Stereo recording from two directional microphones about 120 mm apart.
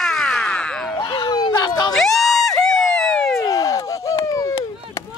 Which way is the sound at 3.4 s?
30° left (ahead or behind).